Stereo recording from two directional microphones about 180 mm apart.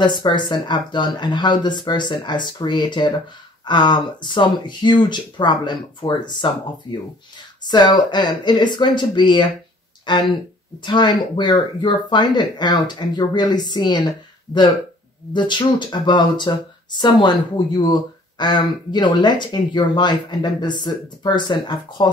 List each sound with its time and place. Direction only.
0.0 s speech: 25° left (ahead or behind)
7.6 s speech: 25° left (ahead or behind)
15.3 s speech: 25° left (ahead or behind)